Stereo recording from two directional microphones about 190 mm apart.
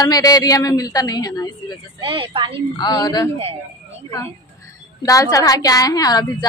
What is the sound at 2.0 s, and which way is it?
Speech, 25° right (ahead or behind).